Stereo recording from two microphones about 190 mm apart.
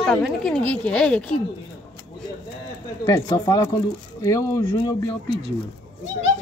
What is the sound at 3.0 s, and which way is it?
Speech, 20° left (ahead or behind).